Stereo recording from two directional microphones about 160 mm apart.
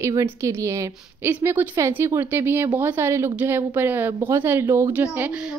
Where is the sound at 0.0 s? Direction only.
20° right (ahead or behind).